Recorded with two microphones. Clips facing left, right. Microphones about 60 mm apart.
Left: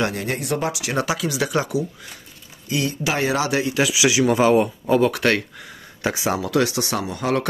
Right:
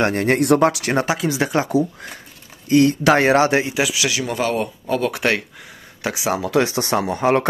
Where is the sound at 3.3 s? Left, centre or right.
Right.